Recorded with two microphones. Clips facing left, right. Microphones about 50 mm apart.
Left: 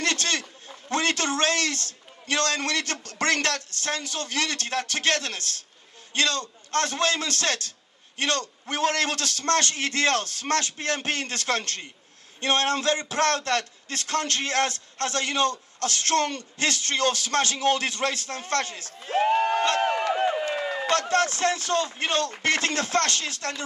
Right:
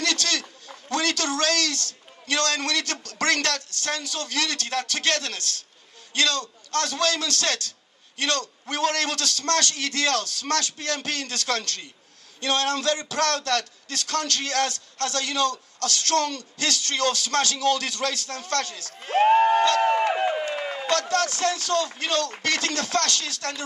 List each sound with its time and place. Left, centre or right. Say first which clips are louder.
0.0 s a man's voice: even; left
18.9 s speech: right 4 dB; right
19.6 s speech: right 3 dB; left
19.9 s speech: right 3 dB; right
20.9 s speech: even; left